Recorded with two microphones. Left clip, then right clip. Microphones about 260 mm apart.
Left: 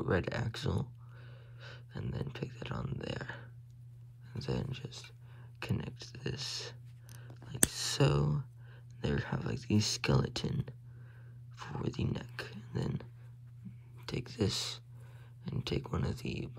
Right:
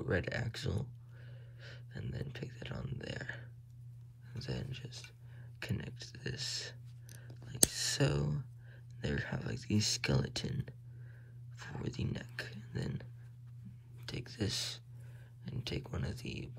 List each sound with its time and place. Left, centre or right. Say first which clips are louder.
0.0 s speech: left 2 dB; centre
14.0 s speech: left 5 dB; centre